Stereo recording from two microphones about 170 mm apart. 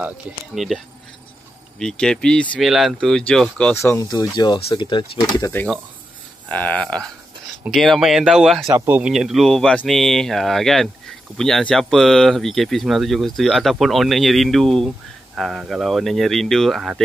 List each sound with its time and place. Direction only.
0.6 s speech: centre (ahead or behind)
1.8 s speech: 5° left (ahead or behind)
3.7 s speech: 15° left (ahead or behind)
6.5 s speech: 10° left (ahead or behind)
8.7 s speech: 10° right (ahead or behind)